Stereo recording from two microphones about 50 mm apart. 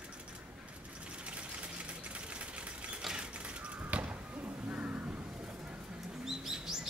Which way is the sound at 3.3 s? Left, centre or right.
Right.